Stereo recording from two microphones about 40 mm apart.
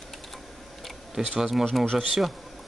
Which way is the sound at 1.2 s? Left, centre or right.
Centre.